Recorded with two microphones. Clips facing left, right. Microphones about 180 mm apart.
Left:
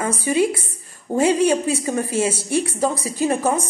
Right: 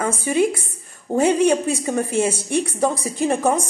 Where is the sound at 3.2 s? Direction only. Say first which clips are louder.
Right 1 dB; 5° left (ahead or behind).